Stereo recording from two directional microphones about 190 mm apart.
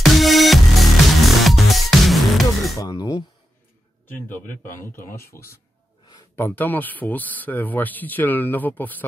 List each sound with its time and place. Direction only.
0.0 s music: centre (ahead or behind)
2.8 s a sound: 20° left (ahead or behind)
4.5 s speech: 10° left (ahead or behind)